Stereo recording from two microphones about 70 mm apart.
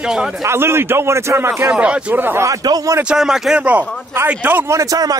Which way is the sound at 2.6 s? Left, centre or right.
Right.